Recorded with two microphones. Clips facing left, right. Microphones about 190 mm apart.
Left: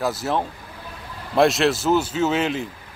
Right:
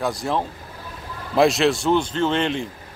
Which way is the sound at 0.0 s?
5° left (ahead or behind).